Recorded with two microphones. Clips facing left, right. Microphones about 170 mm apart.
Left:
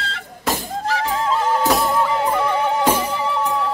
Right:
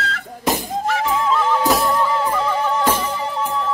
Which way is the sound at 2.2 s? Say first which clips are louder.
Left 1 dB; 60° left (ahead or behind).